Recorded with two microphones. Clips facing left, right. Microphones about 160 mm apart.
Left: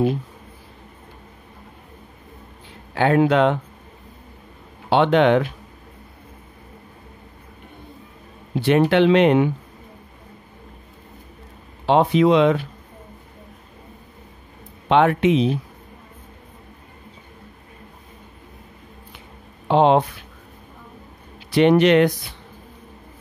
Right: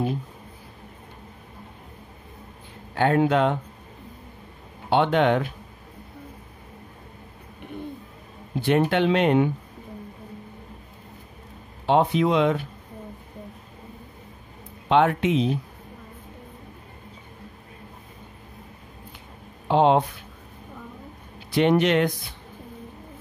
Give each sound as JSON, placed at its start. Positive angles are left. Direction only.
{"t": 2.9, "sound": "speech", "side_deg": 80}
{"t": 4.8, "sound": "speech", "side_deg": 80}
{"t": 8.5, "sound": "speech", "side_deg": 80}
{"t": 11.8, "sound": "speech", "side_deg": 80}
{"t": 14.9, "sound": "speech", "side_deg": 70}
{"t": 19.7, "sound": "speech", "side_deg": 70}
{"t": 21.5, "sound": "speech", "side_deg": 70}